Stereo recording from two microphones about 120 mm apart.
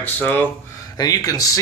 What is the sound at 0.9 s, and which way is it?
Speech, 30° left (ahead or behind).